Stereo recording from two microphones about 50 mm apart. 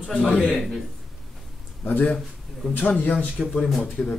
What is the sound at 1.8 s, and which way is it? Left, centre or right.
A man's voice, left.